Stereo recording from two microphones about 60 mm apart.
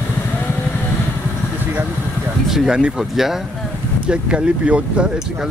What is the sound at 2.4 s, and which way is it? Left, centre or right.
Speech, centre.